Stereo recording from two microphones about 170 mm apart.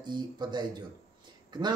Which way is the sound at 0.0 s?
25° right (ahead or behind).